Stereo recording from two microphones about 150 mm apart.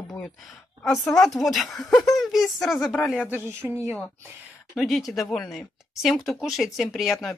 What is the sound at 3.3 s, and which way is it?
Speech, 15° right (ahead or behind).